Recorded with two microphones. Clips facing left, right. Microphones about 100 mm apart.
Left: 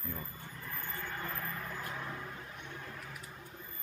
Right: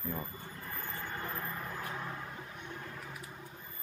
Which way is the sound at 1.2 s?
20° right (ahead or behind).